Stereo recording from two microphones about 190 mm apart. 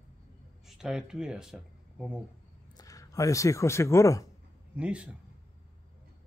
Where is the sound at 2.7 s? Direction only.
20° left (ahead or behind).